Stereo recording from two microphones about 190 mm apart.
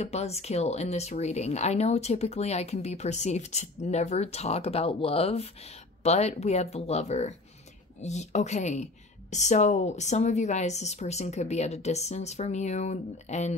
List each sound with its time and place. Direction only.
0.0 s speech: 35° left (ahead or behind)